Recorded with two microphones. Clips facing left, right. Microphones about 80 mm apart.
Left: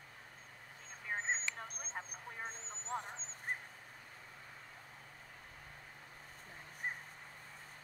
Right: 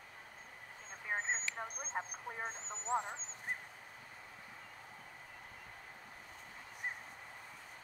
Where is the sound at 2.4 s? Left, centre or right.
Right.